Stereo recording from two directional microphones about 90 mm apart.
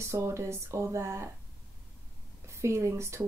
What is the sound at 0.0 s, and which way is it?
Speech, 30° right (ahead or behind).